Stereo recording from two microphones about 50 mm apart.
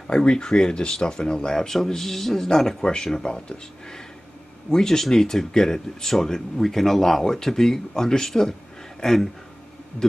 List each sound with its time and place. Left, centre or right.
0.0 s speech: centre